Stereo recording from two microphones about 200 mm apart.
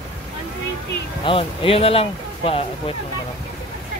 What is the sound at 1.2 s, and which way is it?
Speech, 25° left (ahead or behind).